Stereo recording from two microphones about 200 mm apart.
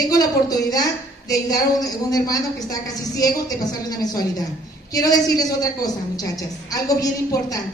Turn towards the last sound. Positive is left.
turn(degrees=15)  # may be behind; listen again after turning